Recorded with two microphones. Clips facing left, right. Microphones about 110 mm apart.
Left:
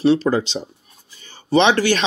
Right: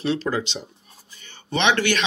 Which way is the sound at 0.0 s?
30° left (ahead or behind).